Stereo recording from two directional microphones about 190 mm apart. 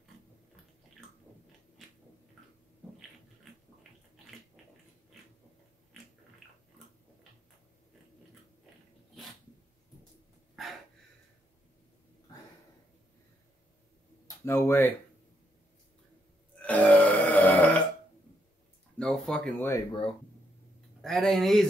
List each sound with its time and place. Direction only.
14.2 s speech: 15° left (ahead or behind)
16.6 s burping: 10° left (ahead or behind)
18.9 s speech: 5° left (ahead or behind)
19.7 s speech: 25° left (ahead or behind)
21.0 s speech: centre (ahead or behind)